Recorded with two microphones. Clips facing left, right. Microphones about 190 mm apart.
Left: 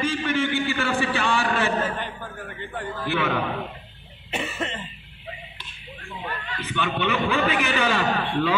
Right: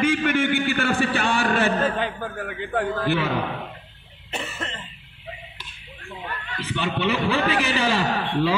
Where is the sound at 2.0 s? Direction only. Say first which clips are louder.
Right 6 dB; 90° right.